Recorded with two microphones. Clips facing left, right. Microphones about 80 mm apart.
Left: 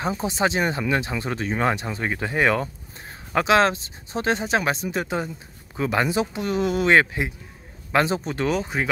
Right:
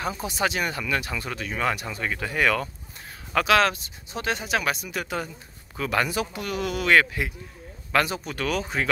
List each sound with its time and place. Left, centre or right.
0.0 s speech: left